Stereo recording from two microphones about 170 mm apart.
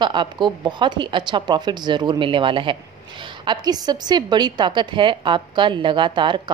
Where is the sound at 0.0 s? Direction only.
25° right (ahead or behind).